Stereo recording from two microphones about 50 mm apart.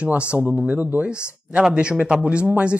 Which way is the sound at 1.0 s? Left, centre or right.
Right.